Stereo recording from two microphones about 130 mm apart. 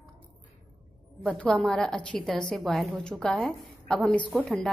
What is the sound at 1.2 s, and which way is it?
A woman's voice, 5° left (ahead or behind).